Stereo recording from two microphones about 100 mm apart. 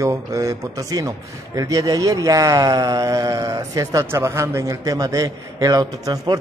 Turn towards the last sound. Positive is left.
turn(degrees=-40)  # may be behind; listen again after turning